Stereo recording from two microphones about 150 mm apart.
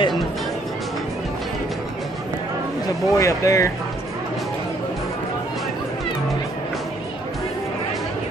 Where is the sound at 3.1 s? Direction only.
20° left (ahead or behind).